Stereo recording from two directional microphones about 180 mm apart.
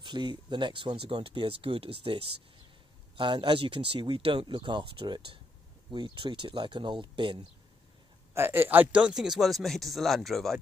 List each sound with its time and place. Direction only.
0.0 s speech: 25° right (ahead or behind)
8.4 s speech: 10° right (ahead or behind)